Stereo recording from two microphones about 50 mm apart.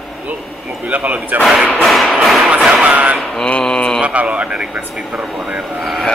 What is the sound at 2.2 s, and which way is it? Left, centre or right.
Music, centre.